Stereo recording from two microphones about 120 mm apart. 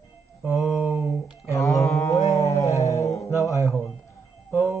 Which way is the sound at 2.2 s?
25° left (ahead or behind).